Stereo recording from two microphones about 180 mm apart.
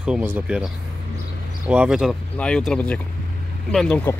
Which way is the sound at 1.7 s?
5° right (ahead or behind).